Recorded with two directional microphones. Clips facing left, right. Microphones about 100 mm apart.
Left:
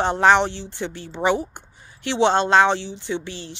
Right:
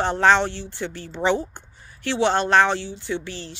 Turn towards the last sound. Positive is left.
turn(degrees=20)  # may be behind; listen again after turning